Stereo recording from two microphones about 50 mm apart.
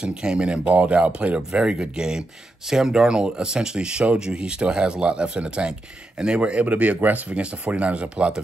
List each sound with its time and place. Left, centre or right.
0.0 s speech: centre
6.6 s speech: right